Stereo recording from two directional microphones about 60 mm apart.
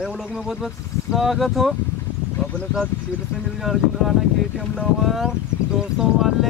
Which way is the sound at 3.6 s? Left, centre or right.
Centre.